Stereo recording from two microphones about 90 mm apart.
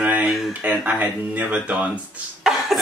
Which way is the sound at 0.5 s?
15° right (ahead or behind).